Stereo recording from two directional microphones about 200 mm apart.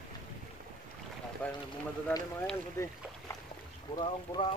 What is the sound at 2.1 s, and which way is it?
Speech, 10° left (ahead or behind).